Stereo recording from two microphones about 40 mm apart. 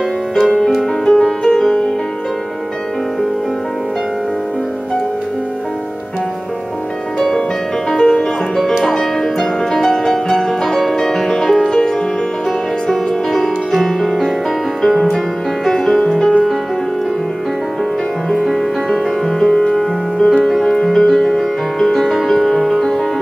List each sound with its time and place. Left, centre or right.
0.4 s music: centre
1.0 s music: centre
7.2 s music: centre
12.8 s music: centre
18.3 s music: centre
19.5 s music: centre
19.8 s music: centre